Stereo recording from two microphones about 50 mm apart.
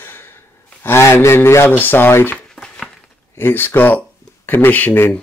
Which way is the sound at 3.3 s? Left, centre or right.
Left.